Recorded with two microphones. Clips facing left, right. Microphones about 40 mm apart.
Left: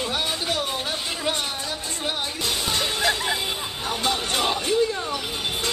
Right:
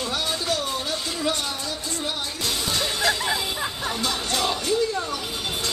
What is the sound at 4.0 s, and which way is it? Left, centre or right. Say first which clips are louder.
Speech: left 2 dB; left.